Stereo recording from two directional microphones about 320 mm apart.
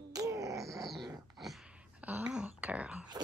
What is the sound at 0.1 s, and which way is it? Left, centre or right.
Groan, centre.